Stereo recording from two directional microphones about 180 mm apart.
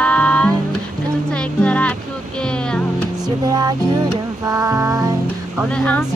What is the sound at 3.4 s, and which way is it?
Music, 20° right (ahead or behind).